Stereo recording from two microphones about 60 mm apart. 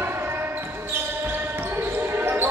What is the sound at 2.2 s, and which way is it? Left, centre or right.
Basketball bounce, right.